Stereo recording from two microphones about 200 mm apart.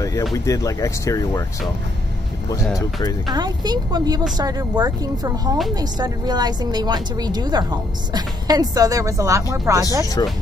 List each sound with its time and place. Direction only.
0.0 s speech: 15° left (ahead or behind)
2.7 s speech: 20° left (ahead or behind)
3.3 s a woman's voice: 20° right (ahead or behind)
10.2 s speech: 20° left (ahead or behind)